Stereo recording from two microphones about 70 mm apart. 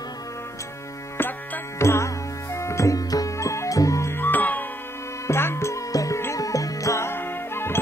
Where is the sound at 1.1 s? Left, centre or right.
Left.